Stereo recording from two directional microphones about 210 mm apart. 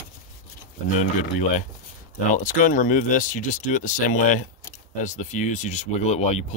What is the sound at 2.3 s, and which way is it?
Speech, 40° left (ahead or behind).